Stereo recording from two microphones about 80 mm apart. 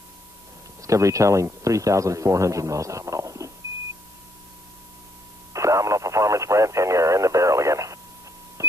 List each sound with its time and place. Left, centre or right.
0.8 s speech: right
5.5 s radio: right
8.6 s a sound: right